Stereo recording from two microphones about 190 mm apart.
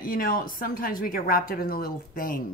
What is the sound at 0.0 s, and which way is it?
Speech, 50° left (ahead or behind).